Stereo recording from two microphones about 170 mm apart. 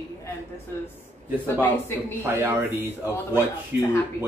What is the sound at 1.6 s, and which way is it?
Speech, 15° left (ahead or behind).